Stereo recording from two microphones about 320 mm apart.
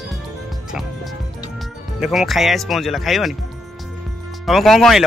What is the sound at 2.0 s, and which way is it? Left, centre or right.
Speech, centre.